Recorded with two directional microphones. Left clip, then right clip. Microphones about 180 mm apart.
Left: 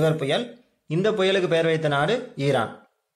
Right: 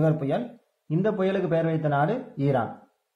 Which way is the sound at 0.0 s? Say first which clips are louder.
Left 3 dB; 15° left (ahead or behind).